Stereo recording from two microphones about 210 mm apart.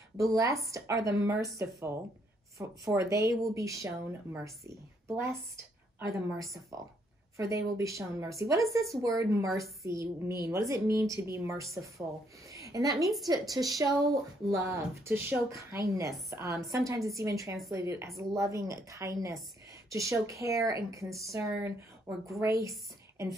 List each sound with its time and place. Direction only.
0.2 s a woman's voice: 15° right (ahead or behind)
3.0 s a woman's voice: 15° right (ahead or behind)
12.4 s a sound: 15° right (ahead or behind)
13.3 s a woman's voice: 15° right (ahead or behind)